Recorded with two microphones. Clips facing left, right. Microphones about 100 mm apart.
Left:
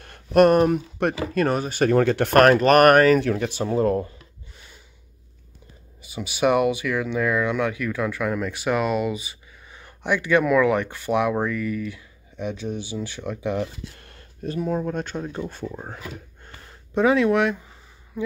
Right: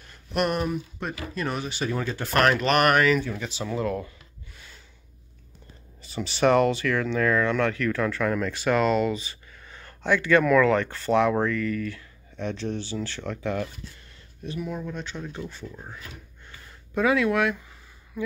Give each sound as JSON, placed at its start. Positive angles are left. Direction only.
{"t": 0.0, "sound": "a sound", "side_deg": 55}
{"t": 0.9, "sound": "speech", "side_deg": 65}
{"t": 1.5, "sound": "speech", "side_deg": 45}
{"t": 2.3, "sound": "speech", "side_deg": 45}
{"t": 3.2, "sound": "speech", "side_deg": 65}
{"t": 3.6, "sound": "speech", "side_deg": 40}
{"t": 6.0, "sound": "speech", "side_deg": 10}
{"t": 13.9, "sound": "a sound", "side_deg": 55}
{"t": 14.9, "sound": "speech", "side_deg": 50}
{"t": 16.9, "sound": "speech", "side_deg": 25}